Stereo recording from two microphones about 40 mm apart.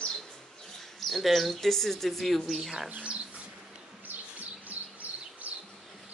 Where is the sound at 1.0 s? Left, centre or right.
Centre.